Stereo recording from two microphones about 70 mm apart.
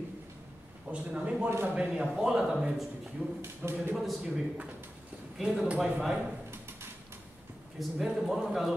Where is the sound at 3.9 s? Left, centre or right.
Centre.